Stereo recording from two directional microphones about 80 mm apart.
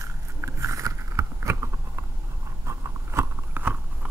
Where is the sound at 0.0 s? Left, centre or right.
Right.